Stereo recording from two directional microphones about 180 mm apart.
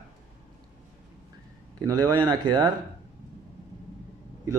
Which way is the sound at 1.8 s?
20° right (ahead or behind).